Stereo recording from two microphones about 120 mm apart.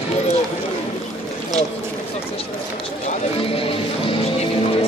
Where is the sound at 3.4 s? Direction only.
50° left (ahead or behind).